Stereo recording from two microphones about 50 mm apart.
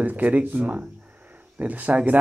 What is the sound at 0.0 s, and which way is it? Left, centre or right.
Speech, right.